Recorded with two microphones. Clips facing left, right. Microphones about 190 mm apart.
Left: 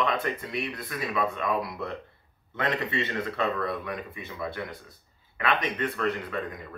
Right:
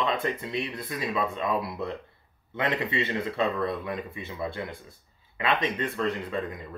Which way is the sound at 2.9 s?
20° right (ahead or behind).